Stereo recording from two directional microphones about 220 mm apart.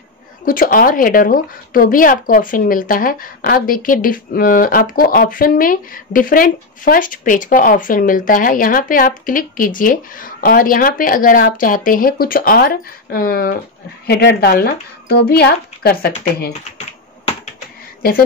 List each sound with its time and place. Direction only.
0.5 s a woman's voice: 40° left (ahead or behind)
16.7 s finger snapping: 30° left (ahead or behind)